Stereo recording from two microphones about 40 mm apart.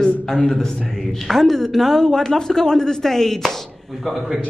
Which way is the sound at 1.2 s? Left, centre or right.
Centre.